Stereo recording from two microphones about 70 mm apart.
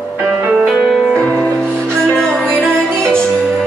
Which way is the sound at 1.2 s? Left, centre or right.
Centre.